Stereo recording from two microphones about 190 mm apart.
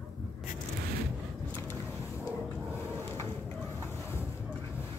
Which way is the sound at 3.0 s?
15° left (ahead or behind).